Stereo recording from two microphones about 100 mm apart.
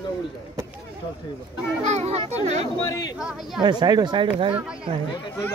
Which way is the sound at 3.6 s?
45° right (ahead or behind).